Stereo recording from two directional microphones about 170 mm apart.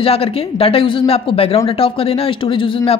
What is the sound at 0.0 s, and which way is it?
A woman's voice, 35° left (ahead or behind).